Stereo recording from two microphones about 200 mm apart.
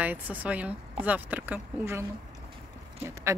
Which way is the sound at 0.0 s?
10° right (ahead or behind).